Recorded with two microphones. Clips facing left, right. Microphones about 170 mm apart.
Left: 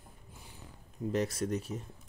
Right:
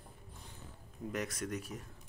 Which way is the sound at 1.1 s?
30° left (ahead or behind).